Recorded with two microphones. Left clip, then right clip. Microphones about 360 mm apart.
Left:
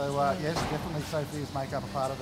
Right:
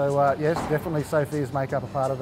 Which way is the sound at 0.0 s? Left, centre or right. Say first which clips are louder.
Right 7 dB; right.